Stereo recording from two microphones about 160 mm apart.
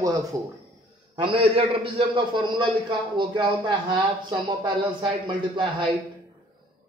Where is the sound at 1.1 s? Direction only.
30° right (ahead or behind).